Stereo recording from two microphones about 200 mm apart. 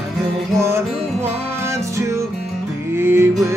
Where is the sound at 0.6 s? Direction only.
15° right (ahead or behind).